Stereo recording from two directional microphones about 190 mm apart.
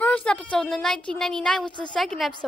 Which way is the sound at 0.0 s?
5° left (ahead or behind).